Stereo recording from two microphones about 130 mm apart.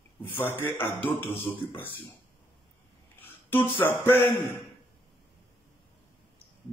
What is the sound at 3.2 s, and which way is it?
Music, 15° left (ahead or behind).